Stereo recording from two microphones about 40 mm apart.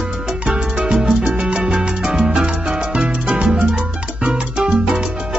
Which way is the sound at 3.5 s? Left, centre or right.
Right.